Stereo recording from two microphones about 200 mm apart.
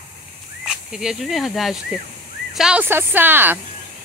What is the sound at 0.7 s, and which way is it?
Speech, 5° right (ahead or behind).